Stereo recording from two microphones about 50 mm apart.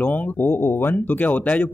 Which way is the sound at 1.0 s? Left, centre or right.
Left.